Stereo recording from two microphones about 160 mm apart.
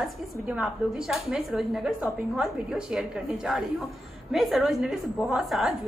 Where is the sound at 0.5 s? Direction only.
5° right (ahead or behind).